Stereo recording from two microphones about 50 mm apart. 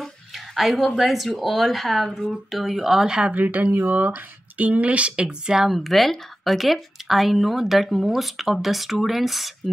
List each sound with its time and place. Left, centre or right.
0.0 s speech: centre
3.3 s speech: right
4.0 s speech: right; by 5.7 s centre
5.7 s speech: centre